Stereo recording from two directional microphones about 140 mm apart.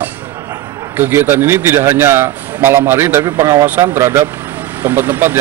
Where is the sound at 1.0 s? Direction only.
15° right (ahead or behind).